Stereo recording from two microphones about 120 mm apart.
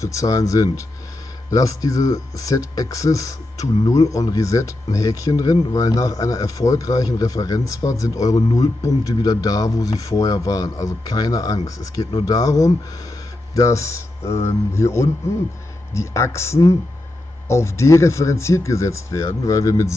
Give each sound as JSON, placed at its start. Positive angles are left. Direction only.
{"t": 0.0, "sound": "speech", "side_deg": 25}